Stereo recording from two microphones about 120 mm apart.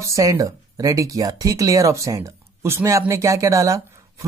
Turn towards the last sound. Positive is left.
turn(degrees=-25)  # may be behind; listen again after turning